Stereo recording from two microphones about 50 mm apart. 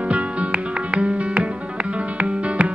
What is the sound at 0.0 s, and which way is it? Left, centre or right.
Music, right.